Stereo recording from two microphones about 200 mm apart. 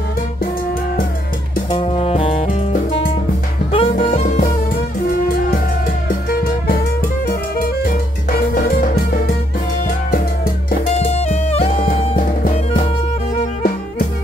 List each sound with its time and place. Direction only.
1.7 s music: 25° left (ahead or behind)
6.0 s music: 45° left (ahead or behind)
8.5 s music: 45° left (ahead or behind)
10.9 s music: 35° left (ahead or behind)